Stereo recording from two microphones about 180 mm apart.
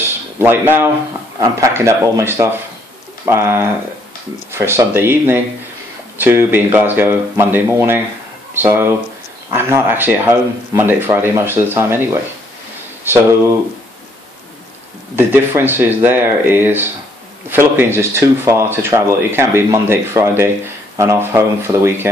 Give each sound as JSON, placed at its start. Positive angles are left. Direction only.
{"t": 0.4, "sound": "speech", "side_deg": -10}
{"t": 15.1, "sound": "speech", "side_deg": -10}